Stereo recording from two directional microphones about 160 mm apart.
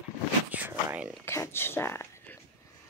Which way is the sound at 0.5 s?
10° right (ahead or behind).